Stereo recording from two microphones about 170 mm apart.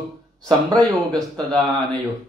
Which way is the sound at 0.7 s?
Centre (ahead or behind).